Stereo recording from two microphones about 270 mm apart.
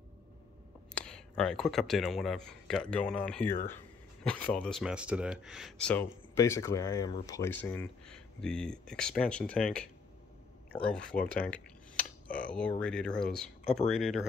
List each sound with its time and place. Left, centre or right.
0.9 s speech: centre